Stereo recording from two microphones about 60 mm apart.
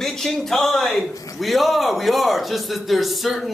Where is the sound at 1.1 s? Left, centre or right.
Left.